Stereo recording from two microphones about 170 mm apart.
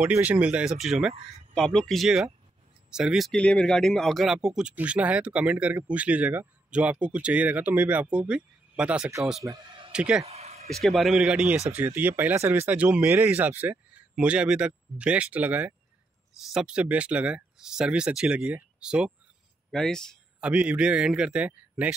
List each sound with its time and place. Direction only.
0.0 s speech: 10° right (ahead or behind)
10.2 s a sound: 35° right (ahead or behind)
10.7 s a man's voice: centre (ahead or behind)